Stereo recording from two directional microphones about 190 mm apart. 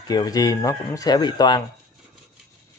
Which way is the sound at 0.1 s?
20° left (ahead or behind).